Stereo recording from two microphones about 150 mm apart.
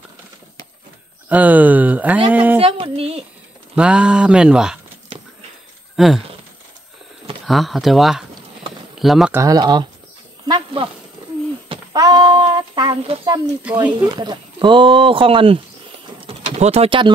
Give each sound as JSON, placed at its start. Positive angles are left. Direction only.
{"t": 1.3, "sound": "speech", "side_deg": -10}
{"t": 2.6, "sound": "speech", "side_deg": -40}
{"t": 3.7, "sound": "speech", "side_deg": -5}
{"t": 5.9, "sound": "speech", "side_deg": -5}
{"t": 7.4, "sound": "speech", "side_deg": 0}
{"t": 9.3, "sound": "speech", "side_deg": -20}
{"t": 10.4, "sound": "wild animals", "side_deg": -30}
{"t": 11.9, "sound": "speech", "side_deg": -25}
{"t": 16.2, "sound": "bird", "side_deg": -45}